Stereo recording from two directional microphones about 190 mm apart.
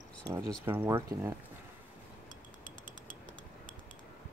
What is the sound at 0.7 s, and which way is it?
Speech, 10° right (ahead or behind).